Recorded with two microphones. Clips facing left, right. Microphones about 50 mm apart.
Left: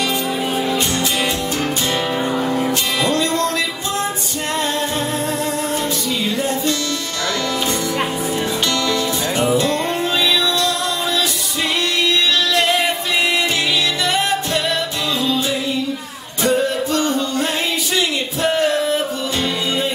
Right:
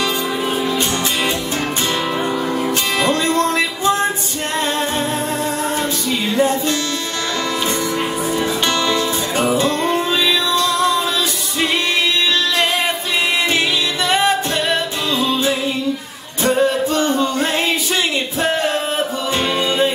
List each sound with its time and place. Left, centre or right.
3.0 s music: right
9.5 s music: right
16.4 s music: right